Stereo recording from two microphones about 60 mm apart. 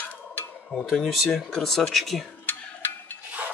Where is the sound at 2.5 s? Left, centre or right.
Left.